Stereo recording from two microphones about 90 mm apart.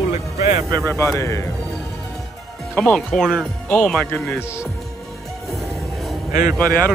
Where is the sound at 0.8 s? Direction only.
30° left (ahead or behind).